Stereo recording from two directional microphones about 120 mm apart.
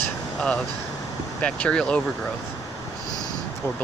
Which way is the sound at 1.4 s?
10° left (ahead or behind).